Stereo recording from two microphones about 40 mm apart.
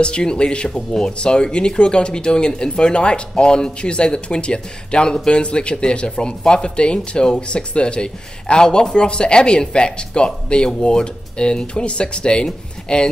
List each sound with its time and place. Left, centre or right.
0.0 s speech: left